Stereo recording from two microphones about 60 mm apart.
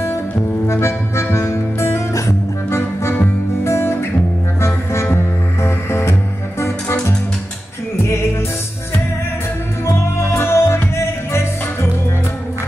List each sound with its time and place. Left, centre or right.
0.7 s music: left
2.8 s music: left
9.8 s music: left